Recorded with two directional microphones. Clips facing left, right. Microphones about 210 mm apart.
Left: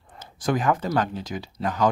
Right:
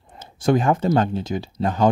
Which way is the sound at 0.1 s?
25° right (ahead or behind).